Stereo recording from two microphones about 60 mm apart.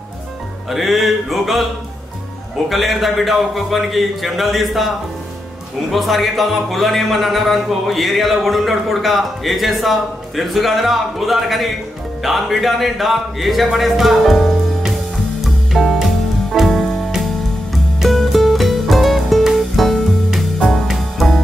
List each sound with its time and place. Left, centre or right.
0.7 s speech: centre
2.7 s speech: centre
15.4 s music: centre
18.1 s music: centre